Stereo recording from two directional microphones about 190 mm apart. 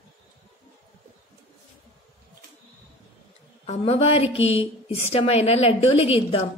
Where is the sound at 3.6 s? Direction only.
35° left (ahead or behind).